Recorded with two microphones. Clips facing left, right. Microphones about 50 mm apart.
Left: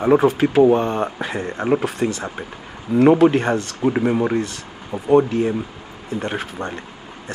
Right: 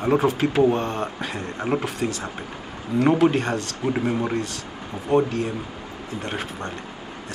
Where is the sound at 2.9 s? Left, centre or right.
Centre.